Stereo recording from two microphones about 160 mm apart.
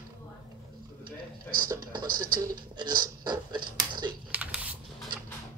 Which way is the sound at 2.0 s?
65° right (ahead or behind).